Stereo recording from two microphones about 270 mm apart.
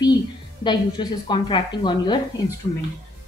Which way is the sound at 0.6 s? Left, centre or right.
Centre.